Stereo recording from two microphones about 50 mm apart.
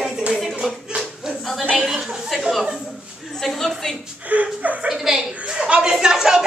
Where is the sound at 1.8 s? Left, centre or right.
Centre.